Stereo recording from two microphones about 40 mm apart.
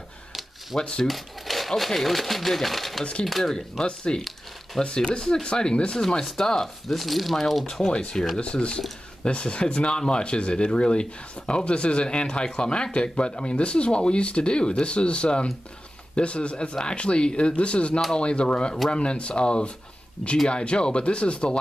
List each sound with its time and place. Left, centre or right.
0.3 s a sound: centre
0.7 s speech: left
1.0 s speech: centre
3.8 s speech: left
6.0 s speech: centre
7.0 s speech: centre
8.1 s speech: centre